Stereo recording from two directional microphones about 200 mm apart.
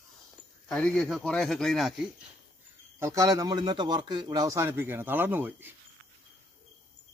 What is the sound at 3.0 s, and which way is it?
Speech, 15° right (ahead or behind).